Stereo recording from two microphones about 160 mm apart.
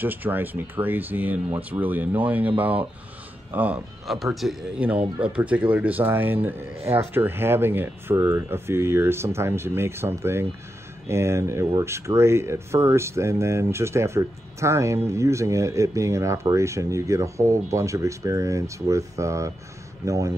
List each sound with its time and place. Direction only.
0.0 s speech: 10° right (ahead or behind)